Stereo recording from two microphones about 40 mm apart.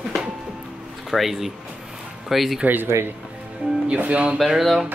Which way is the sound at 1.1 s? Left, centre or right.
Centre.